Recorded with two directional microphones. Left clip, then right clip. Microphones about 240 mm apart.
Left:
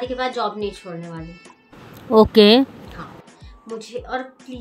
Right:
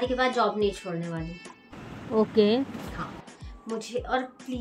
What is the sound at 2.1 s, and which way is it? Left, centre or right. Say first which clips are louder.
Speech: left 11 dB; left.